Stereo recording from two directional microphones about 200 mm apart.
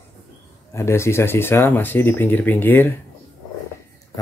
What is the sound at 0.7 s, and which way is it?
Speech, 15° left (ahead or behind).